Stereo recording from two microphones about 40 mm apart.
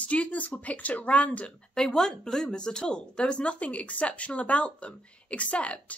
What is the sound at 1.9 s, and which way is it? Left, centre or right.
Speech, centre.